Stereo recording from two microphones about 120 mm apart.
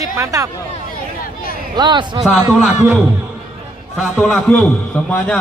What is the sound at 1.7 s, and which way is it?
Speech, 40° right (ahead or behind).